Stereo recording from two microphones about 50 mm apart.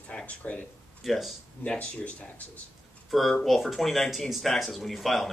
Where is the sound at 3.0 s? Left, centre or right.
Centre.